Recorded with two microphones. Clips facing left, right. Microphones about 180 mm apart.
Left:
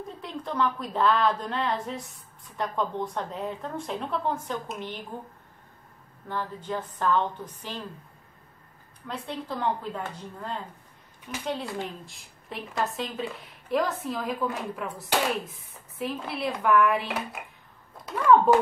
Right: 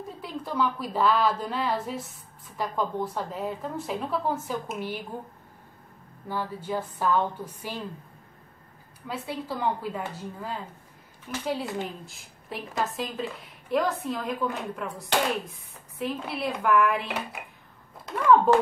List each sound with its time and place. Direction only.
0.2 s a woman's voice: 5° right (ahead or behind)
6.2 s speech: 10° right (ahead or behind)
9.0 s a woman's voice: 5° right (ahead or behind)
18.0 s a sound: centre (ahead or behind)